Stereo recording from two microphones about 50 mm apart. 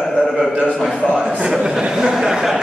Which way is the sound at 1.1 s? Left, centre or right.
Centre.